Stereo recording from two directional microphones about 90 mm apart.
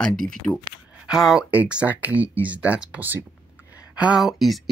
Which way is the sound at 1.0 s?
5° right (ahead or behind).